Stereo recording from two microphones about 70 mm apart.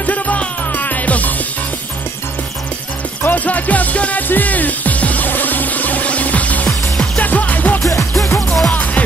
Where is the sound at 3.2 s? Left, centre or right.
Left.